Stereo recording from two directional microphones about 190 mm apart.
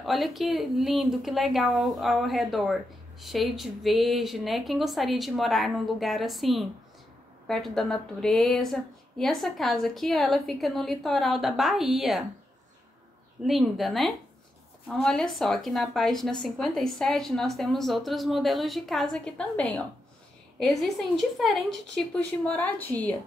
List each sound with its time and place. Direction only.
0.0 s speech: centre (ahead or behind)
13.4 s a woman's voice: centre (ahead or behind)